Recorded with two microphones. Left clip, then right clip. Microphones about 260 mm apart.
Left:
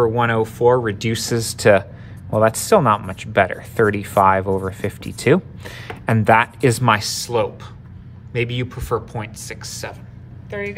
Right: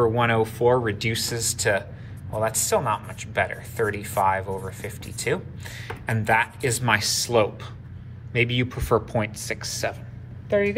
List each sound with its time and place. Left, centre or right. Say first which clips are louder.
0.0 s speech: left 4 dB; left
10.5 s speech: right 6 dB; centre